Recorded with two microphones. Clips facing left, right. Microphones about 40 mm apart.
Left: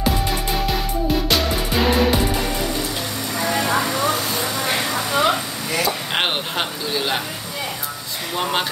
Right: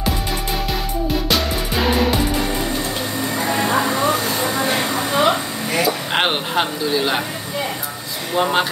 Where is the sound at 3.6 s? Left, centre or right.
Right.